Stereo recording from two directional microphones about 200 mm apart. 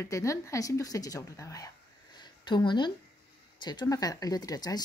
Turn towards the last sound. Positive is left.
turn(degrees=20)  # may be behind; listen again after turning